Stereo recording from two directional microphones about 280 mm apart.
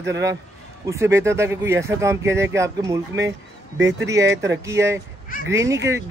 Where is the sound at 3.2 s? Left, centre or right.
Right.